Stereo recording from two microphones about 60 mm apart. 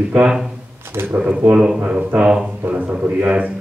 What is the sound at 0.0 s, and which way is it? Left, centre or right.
Speech, right.